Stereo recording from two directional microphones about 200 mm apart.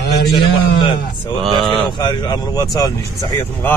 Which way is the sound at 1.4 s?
Centre (ahead or behind).